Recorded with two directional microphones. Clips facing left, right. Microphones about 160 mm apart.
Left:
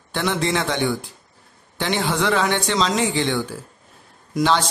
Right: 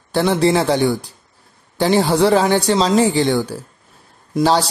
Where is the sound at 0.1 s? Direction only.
35° right (ahead or behind).